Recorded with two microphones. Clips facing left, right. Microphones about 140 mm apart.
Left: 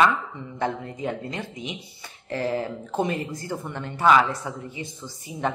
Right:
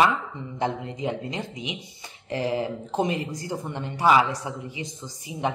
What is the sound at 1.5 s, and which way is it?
Speech, 50° left (ahead or behind).